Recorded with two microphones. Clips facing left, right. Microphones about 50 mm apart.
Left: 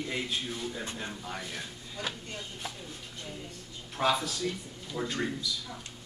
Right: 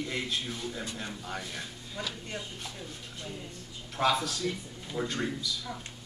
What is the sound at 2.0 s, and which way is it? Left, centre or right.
Speech, right.